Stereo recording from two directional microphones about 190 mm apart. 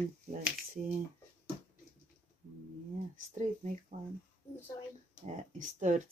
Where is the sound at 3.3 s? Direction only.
40° right (ahead or behind).